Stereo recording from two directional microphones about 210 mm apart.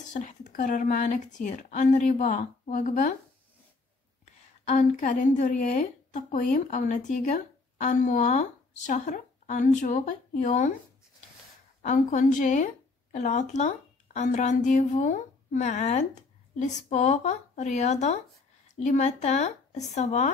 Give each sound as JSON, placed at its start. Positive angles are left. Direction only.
{"t": 0.1, "sound": "a woman's voice", "side_deg": 35}
{"t": 4.6, "sound": "a woman's voice", "side_deg": 35}
{"t": 11.8, "sound": "a woman's voice", "side_deg": 35}